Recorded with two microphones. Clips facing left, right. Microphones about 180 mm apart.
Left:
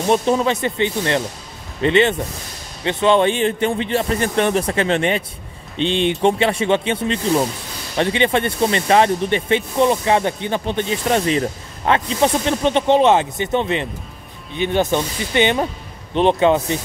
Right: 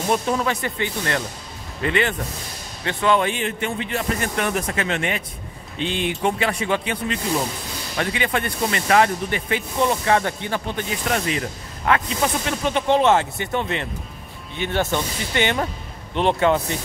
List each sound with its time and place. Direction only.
0.1 s speech: 25° left (ahead or behind)